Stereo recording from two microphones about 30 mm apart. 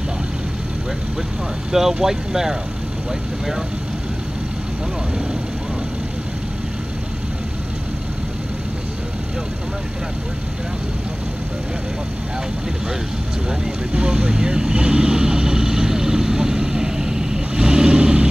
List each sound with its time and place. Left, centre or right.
1.7 s speech: centre
14.1 s vehicle: right